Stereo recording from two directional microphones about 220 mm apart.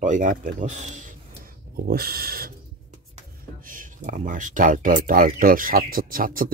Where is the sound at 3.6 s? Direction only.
40° right (ahead or behind).